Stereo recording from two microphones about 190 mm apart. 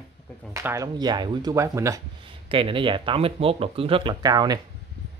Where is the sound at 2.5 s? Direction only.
25° right (ahead or behind).